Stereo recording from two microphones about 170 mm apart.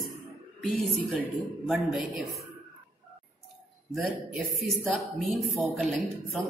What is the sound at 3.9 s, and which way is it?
Speech, centre (ahead or behind).